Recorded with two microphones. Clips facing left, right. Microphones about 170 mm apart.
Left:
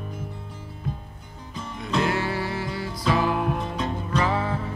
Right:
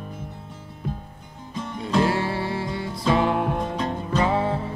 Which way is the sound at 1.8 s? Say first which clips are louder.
Right 3 dB; 30° right (ahead or behind).